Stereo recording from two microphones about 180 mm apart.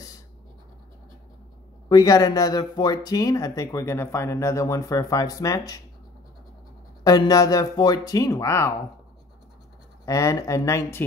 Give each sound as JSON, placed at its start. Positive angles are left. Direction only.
{"t": 1.9, "sound": "speech", "side_deg": 20}
{"t": 7.0, "sound": "speech", "side_deg": 20}
{"t": 10.0, "sound": "speech", "side_deg": 20}